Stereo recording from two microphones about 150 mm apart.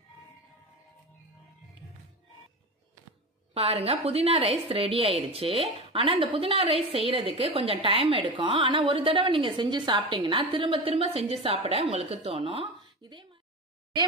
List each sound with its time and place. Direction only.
3.5 s a woman's voice: 45° right (ahead or behind)